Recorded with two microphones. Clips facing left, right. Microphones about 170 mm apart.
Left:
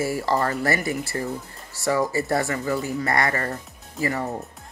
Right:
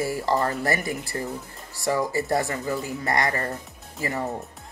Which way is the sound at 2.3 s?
20° right (ahead or behind).